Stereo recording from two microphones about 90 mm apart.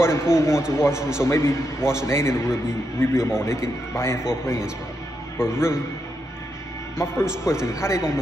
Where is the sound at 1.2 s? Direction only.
30° left (ahead or behind).